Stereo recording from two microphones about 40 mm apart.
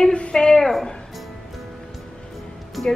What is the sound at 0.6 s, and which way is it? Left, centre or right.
Speech, centre.